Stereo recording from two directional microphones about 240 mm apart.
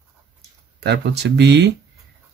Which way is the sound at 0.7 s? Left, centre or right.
Right.